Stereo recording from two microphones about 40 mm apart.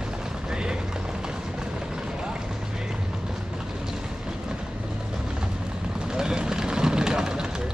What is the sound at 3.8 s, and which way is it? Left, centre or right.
Vehicle, centre.